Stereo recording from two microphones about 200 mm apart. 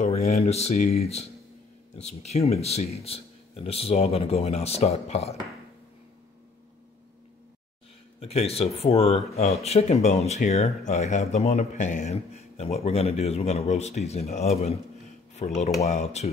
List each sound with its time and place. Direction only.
0.3 s speech: 30° left (ahead or behind)
8.2 s speech: 30° left (ahead or behind)